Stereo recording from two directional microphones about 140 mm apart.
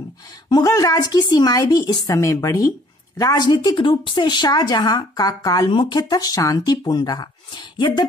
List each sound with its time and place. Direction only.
0.5 s a woman's voice: 25° left (ahead or behind)